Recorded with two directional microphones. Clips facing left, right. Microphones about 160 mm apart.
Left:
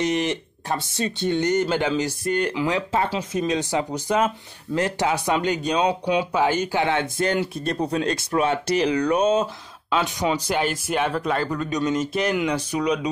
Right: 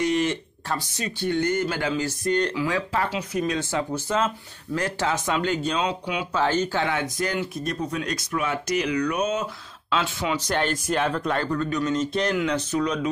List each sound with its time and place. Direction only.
0.0 s speech: 20° left (ahead or behind)
2.2 s speech: 10° left (ahead or behind)
2.5 s speech: 20° left (ahead or behind)
6.9 s speech: 25° left (ahead or behind)
9.9 s speech: 15° left (ahead or behind)